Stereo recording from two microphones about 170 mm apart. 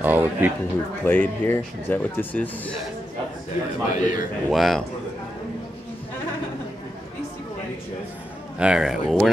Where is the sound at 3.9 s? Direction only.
50° left (ahead or behind).